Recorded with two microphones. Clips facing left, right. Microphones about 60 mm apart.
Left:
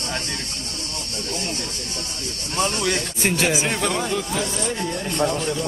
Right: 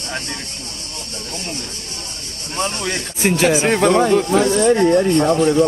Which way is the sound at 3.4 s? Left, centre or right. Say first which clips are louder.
Right 11 dB; right.